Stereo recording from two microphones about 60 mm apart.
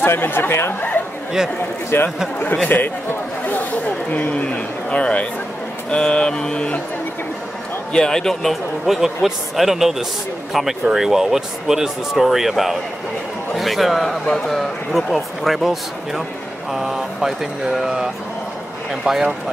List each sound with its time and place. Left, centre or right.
0.0 s speech: left
1.9 s speech: left
2.7 s a sound: left
3.8 s speech: left
7.9 s speech: centre
8.8 s speech: centre